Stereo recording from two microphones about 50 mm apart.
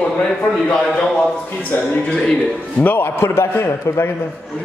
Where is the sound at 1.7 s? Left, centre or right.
Left.